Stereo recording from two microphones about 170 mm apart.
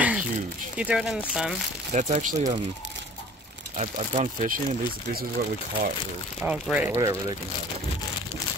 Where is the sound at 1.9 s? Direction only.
45° right (ahead or behind).